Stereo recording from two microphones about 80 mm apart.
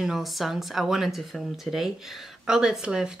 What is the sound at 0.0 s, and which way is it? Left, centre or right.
Speech, centre.